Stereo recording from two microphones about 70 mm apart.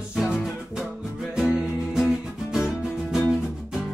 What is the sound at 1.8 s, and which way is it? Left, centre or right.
Music, centre.